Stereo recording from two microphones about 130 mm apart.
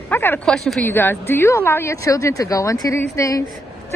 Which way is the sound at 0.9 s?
15° left (ahead or behind).